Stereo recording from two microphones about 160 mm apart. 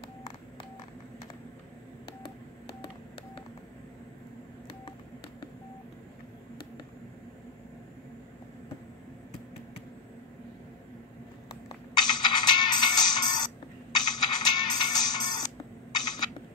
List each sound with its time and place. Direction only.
12.0 s music: 25° left (ahead or behind)